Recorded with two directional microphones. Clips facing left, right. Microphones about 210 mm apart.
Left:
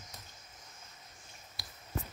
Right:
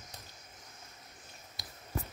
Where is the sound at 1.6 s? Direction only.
20° right (ahead or behind).